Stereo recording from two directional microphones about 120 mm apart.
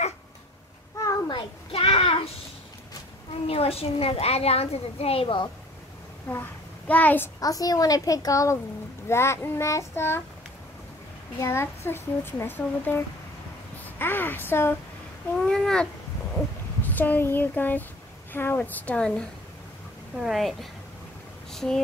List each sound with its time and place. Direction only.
1.3 s child singing: 50° left (ahead or behind)
3.4 s a child's voice: 55° left (ahead or behind)
6.2 s a child's voice: 15° left (ahead or behind)
7.3 s a child's voice: 30° left (ahead or behind)
11.3 s a child's voice: 20° left (ahead or behind)
15.4 s a woman's voice: 5° left (ahead or behind)